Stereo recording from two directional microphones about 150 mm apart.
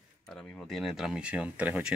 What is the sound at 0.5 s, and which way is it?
A man's voice, centre (ahead or behind).